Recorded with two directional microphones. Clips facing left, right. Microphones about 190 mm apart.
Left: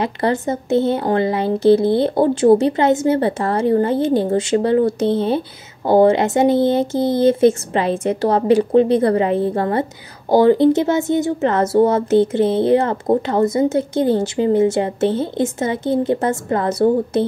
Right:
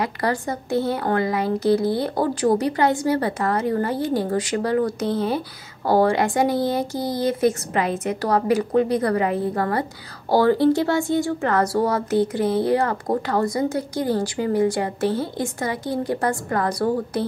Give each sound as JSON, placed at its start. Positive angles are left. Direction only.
{"t": 0.0, "sound": "speech", "side_deg": 25}